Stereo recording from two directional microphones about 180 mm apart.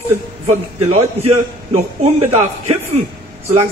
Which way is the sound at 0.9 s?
35° right (ahead or behind).